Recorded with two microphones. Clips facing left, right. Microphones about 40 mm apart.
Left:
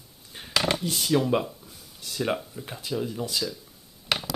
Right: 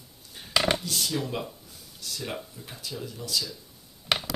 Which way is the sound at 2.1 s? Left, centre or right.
Left.